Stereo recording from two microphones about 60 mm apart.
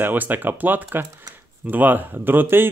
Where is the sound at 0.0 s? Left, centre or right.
Right.